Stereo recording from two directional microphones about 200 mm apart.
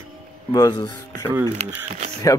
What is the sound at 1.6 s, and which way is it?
Speech, 35° right (ahead or behind).